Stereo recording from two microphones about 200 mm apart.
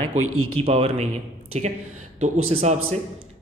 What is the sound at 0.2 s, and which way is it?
Speech, 90° right.